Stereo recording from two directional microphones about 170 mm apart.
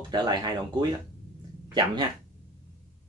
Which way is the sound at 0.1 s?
25° right (ahead or behind).